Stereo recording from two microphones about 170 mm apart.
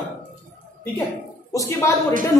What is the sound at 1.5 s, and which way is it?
Speech, 20° left (ahead or behind).